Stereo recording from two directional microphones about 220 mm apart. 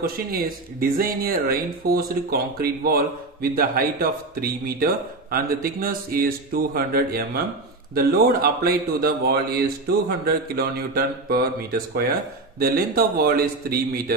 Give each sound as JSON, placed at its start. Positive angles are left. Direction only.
{"t": 0.0, "sound": "speech", "side_deg": -40}